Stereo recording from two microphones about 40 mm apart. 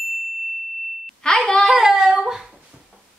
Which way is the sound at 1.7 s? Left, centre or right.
Centre.